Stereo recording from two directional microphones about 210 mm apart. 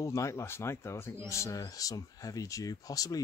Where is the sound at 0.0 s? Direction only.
15° left (ahead or behind).